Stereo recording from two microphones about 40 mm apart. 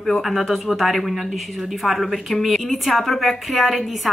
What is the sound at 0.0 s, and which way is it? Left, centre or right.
Speech, centre.